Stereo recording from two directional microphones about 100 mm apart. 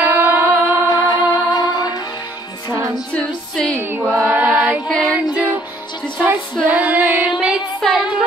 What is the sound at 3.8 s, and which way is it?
Music, 20° right (ahead or behind).